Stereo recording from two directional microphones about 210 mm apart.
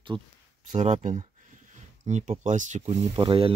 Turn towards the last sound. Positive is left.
turn(degrees=-25)  # may be behind; listen again after turning